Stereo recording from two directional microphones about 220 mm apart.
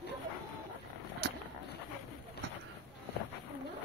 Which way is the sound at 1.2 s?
50° right (ahead or behind).